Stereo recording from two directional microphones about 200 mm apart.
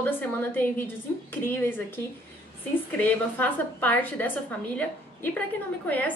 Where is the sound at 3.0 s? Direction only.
10° left (ahead or behind).